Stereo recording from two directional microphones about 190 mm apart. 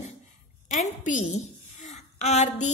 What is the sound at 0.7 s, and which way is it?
A woman's voice, 40° left (ahead or behind).